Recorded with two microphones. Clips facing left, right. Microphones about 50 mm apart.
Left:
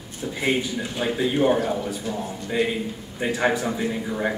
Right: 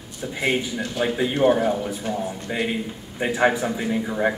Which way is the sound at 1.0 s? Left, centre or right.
Centre.